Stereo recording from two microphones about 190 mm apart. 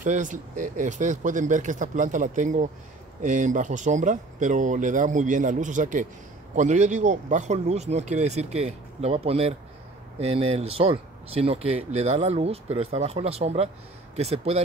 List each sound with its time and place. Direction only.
0.0 s speech: 40° right (ahead or behind)